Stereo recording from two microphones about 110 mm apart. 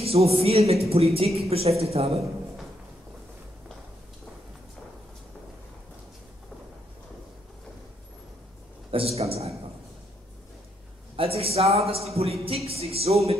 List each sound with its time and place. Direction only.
0.0 s a man's voice: 65° right (ahead or behind)
8.9 s a man's voice: 65° right (ahead or behind)
11.1 s a man's voice: 60° right (ahead or behind)